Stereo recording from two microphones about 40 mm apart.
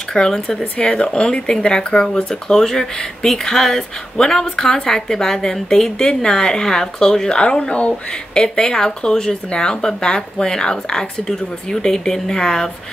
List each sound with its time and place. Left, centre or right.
0.1 s speech: centre
0.7 s speech: left